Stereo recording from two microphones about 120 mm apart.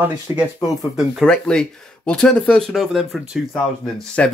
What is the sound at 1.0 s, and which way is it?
Speech, centre (ahead or behind).